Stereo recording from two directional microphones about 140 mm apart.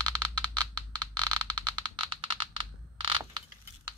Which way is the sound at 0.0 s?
30° right (ahead or behind).